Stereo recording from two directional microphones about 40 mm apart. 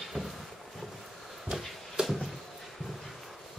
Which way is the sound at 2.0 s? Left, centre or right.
Right.